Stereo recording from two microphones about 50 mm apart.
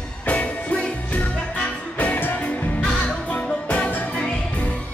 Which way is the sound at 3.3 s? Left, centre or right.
Left.